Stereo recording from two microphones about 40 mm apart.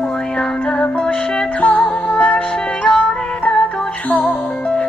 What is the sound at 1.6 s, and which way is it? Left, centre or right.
Music, left.